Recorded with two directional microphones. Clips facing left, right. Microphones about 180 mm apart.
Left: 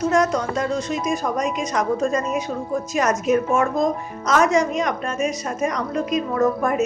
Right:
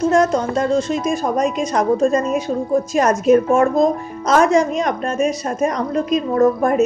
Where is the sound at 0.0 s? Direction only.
30° right (ahead or behind).